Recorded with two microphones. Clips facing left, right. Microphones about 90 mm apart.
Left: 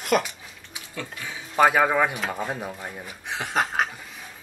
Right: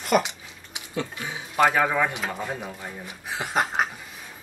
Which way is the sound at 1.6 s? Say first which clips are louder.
Left 2 dB; 15° left (ahead or behind).